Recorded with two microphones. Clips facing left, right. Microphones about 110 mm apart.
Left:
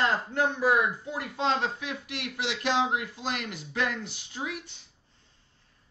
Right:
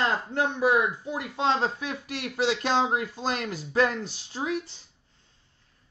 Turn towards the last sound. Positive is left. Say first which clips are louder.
# right 6 dB
turn(degrees=-35)  # may be behind; listen again after turning